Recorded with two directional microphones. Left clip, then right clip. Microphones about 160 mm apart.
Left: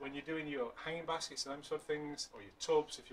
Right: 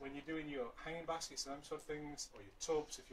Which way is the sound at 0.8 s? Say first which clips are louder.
Left 4 dB; 5° left (ahead or behind).